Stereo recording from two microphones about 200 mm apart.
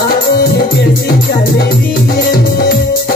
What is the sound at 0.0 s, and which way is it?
Music, 50° left (ahead or behind).